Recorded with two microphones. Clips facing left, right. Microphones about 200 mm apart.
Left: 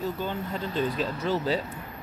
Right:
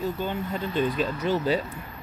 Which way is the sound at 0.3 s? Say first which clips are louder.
Right 2 dB; 20° right (ahead or behind).